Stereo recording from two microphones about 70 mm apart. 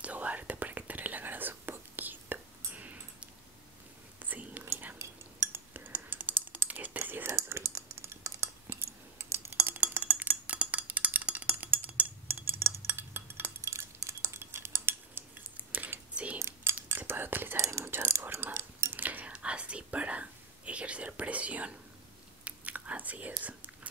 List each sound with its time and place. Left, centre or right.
0.0 s whispering: right
4.9 s typing: right
7.0 s whispering: right
7.2 s typing: right
9.2 s a sound: right
9.8 s a sound: right
13.6 s cutlery: right
15.5 s a sound: right
16.3 s cutlery: right
16.9 s whispering: right
17.6 s a sound: right; by 21.7 s centre
22.4 s whispering: right